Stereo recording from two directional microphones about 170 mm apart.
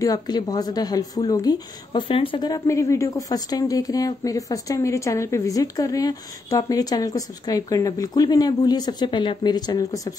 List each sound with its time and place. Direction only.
0.0 s a woman's voice: 20° left (ahead or behind)